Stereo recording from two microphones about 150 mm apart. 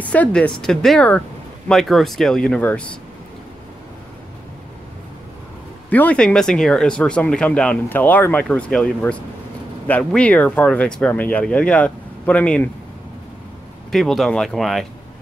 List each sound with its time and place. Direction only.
0.0 s speech: 10° left (ahead or behind)
5.9 s speech: 10° left (ahead or behind)
13.9 s speech: centre (ahead or behind)